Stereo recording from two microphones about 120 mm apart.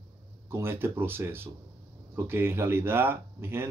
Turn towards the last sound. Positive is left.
turn(degrees=-20)  # may be behind; listen again after turning